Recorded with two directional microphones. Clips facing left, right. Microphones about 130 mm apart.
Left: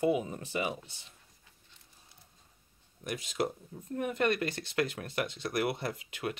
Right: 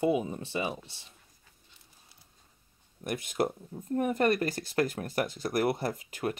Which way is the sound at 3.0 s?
50° right (ahead or behind).